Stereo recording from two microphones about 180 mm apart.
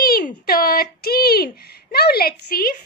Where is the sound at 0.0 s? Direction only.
55° left (ahead or behind).